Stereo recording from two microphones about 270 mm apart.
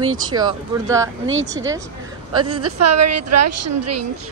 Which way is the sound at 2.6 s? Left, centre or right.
Right.